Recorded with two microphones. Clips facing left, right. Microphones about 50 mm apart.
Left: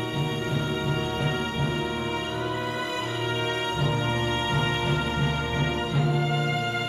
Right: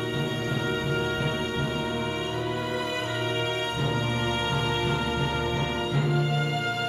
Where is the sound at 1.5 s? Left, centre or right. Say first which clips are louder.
Left 1 dB; left.